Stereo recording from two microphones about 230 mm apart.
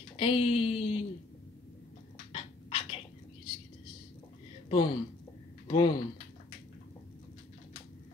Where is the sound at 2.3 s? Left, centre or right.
Left.